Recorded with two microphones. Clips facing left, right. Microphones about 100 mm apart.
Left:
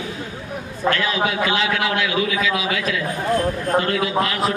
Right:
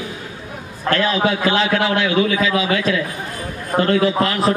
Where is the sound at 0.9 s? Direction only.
35° right (ahead or behind).